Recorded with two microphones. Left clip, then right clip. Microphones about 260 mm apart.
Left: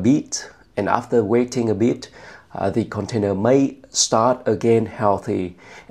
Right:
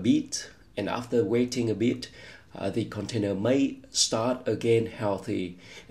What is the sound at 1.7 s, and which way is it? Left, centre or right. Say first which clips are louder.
Speech: left 8 dB; left.